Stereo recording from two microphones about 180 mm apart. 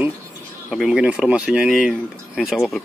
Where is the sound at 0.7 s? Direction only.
5° right (ahead or behind).